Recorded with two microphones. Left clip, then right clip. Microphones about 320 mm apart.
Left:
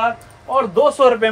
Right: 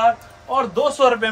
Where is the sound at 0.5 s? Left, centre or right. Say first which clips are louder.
Left 4 dB; centre.